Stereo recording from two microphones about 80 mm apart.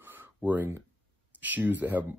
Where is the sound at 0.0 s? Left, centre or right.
Right.